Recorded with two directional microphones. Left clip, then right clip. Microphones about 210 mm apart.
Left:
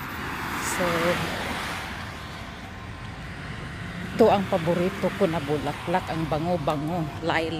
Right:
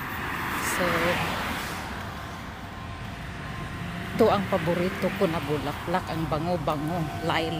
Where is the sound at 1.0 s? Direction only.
50° left (ahead or behind).